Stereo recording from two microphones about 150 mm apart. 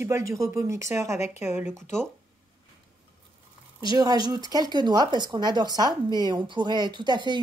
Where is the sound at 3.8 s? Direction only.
25° right (ahead or behind).